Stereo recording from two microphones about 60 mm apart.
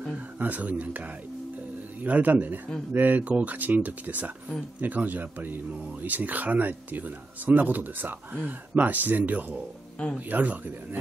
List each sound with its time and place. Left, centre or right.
0.4 s speech: right
2.0 s speech: right